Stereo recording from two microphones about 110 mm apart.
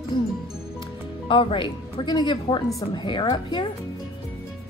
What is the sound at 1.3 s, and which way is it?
Speech, 50° left (ahead or behind).